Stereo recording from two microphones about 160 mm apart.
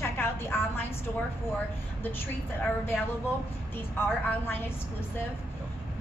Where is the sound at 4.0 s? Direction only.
15° left (ahead or behind).